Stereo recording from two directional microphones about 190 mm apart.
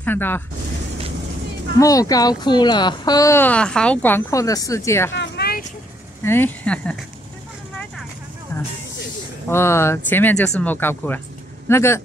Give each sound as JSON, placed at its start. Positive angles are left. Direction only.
{"t": 0.0, "sound": "speech", "side_deg": 10}
{"t": 1.8, "sound": "speech", "side_deg": 20}
{"t": 5.1, "sound": "a sound", "side_deg": 65}
{"t": 6.2, "sound": "speech", "side_deg": 10}
{"t": 8.5, "sound": "hiss", "side_deg": 10}
{"t": 9.5, "sound": "speech", "side_deg": 15}